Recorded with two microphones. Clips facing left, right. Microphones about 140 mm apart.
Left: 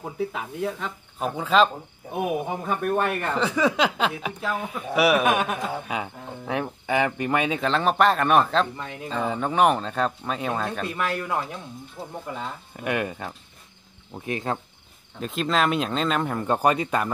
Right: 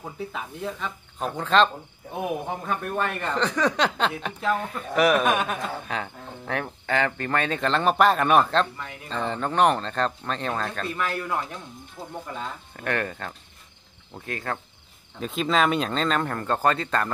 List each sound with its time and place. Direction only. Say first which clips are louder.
0.0 s speech: left 4 dB; 5° left (ahead or behind)
15.1 s speech: right 1 dB; centre (ahead or behind)